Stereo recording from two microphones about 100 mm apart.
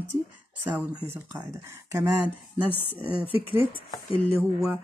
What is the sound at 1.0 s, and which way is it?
Speech, 25° right (ahead or behind).